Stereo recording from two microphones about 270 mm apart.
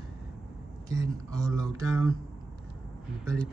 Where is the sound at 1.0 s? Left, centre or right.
Centre.